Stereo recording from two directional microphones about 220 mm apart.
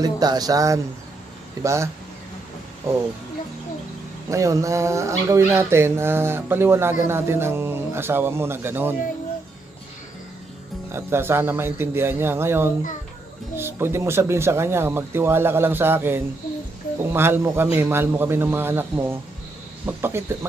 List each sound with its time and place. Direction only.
0.0 s speech: 15° right (ahead or behind)
4.3 s speech: 15° right (ahead or behind)
10.9 s speech: 10° right (ahead or behind)